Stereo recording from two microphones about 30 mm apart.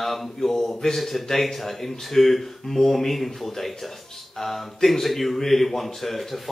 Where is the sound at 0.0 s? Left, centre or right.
Centre.